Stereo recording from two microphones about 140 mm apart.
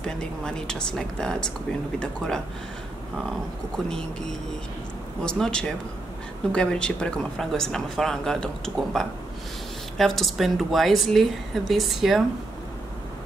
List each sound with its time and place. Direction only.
0.0 s speech: 5° left (ahead or behind)